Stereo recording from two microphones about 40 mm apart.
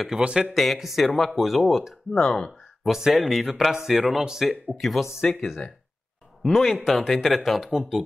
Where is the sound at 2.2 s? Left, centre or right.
Centre.